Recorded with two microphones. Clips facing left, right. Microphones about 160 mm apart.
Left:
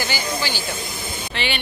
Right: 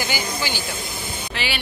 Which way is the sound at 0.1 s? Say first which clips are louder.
Left 1 dB; 15° right (ahead or behind).